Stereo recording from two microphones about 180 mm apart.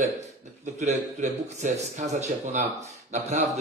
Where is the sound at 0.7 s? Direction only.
40° right (ahead or behind).